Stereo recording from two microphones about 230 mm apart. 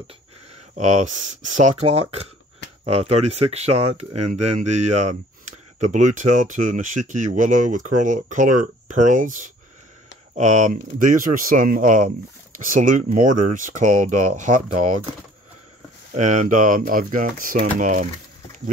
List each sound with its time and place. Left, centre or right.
0.7 s speech: right
16.2 s speech: right